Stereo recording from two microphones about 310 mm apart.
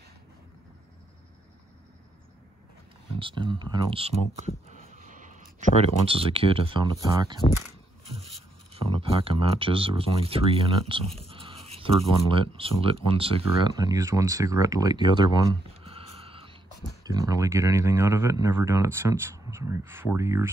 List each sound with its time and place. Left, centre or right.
3.2 s speech: centre
4.2 s speech: left
4.6 s speech: right
9.2 s speech: centre